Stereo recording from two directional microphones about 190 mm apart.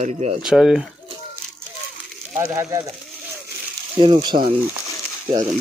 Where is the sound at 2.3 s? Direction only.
15° right (ahead or behind).